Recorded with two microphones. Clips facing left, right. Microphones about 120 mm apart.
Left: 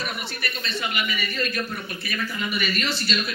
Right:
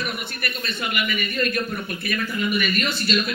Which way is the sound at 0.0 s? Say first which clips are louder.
Right 2 dB; 55° right (ahead or behind).